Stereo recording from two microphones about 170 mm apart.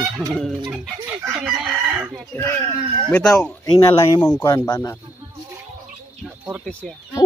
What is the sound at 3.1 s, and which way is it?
A child's voice, 10° left (ahead or behind).